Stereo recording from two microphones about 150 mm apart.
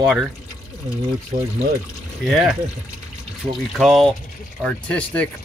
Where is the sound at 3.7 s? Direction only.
Centre (ahead or behind).